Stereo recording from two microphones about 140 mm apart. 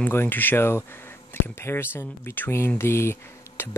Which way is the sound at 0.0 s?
15° left (ahead or behind).